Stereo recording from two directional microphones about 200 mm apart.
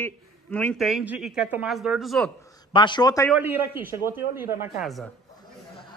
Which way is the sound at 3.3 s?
10° right (ahead or behind).